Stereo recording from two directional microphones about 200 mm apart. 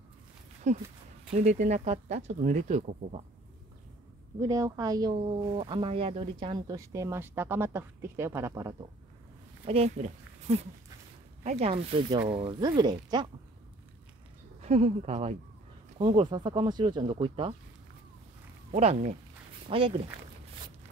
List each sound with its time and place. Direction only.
0.7 s speech: 35° right (ahead or behind)
4.4 s a woman's voice: 15° right (ahead or behind)
5.1 s speech: 30° right (ahead or behind); by 8.7 s 15° right (ahead or behind)
9.7 s speech: 35° right (ahead or behind)
14.6 s speech: 35° right (ahead or behind)
18.7 s speech: 30° right (ahead or behind)